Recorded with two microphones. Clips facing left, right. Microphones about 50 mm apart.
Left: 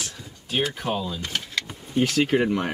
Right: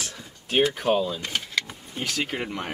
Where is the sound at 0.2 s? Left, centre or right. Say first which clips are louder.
Right 4 dB; centre.